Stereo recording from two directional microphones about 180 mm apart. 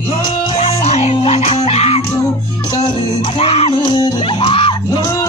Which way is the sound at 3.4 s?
35° left (ahead or behind).